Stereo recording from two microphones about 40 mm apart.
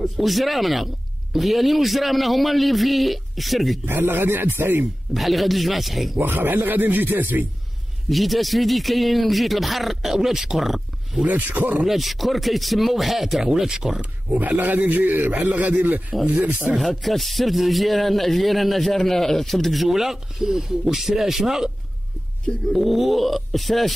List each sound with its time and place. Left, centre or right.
0.0 s a man's voice: centre
3.8 s speech: right
5.1 s a man's voice: centre
6.1 s speech: right
8.1 s a man's voice: centre
11.2 s a man's voice: right
11.9 s a man's voice: centre
14.3 s a man's voice: right
15.7 s speech: right
16.3 s speech: right
16.8 s a man's voice: centre